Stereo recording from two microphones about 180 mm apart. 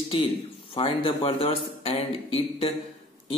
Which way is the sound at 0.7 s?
30° left (ahead or behind).